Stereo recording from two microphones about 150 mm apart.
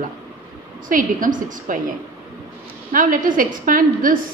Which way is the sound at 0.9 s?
65° right (ahead or behind).